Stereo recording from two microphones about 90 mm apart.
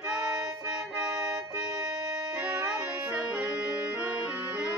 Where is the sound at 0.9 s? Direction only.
55° right (ahead or behind).